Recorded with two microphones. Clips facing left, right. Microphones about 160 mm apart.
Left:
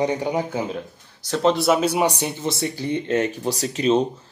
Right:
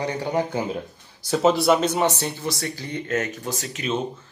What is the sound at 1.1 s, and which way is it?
Speech, 10° right (ahead or behind).